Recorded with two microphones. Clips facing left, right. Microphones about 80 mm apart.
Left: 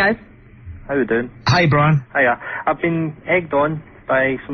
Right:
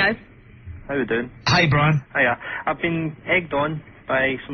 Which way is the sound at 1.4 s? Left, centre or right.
Left.